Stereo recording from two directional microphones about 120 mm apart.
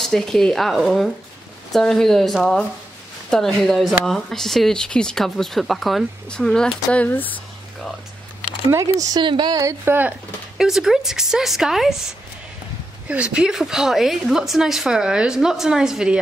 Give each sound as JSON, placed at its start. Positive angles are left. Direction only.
{"t": 0.0, "sound": "speech", "side_deg": 5}
{"t": 9.0, "sound": "speech", "side_deg": -40}
{"t": 9.6, "sound": "speech", "side_deg": -25}
{"t": 10.6, "sound": "speech", "side_deg": -5}
{"t": 13.1, "sound": "speech", "side_deg": -10}